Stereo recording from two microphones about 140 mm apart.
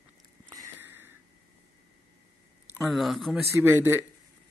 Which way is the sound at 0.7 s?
15° right (ahead or behind).